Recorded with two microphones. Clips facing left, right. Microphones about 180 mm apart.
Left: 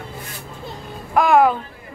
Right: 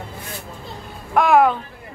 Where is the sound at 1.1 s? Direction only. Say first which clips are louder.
Even; centre (ahead or behind).